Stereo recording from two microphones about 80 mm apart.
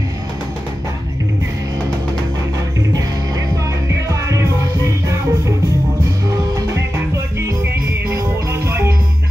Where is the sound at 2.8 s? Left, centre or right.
Right.